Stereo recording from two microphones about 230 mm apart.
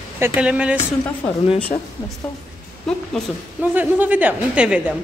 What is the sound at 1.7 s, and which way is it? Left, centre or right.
Speech, left.